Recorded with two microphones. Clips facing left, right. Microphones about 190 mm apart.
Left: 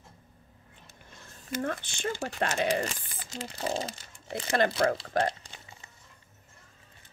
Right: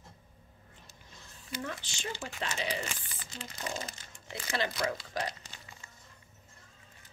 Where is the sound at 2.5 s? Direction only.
55° left (ahead or behind).